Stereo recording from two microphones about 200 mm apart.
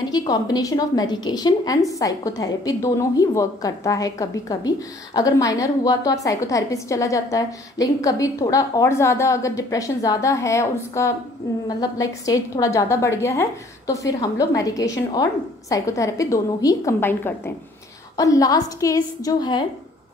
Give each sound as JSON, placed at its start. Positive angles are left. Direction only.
{"t": 0.1, "sound": "a woman's voice", "side_deg": 20}